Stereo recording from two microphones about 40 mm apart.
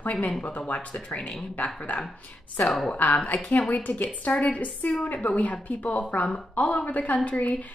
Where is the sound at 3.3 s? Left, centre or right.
Left.